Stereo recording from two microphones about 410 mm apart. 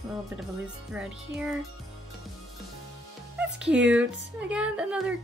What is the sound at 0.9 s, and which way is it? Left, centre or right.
Speech, centre.